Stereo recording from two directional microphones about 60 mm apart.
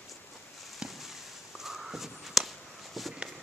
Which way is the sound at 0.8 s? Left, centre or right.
Centre.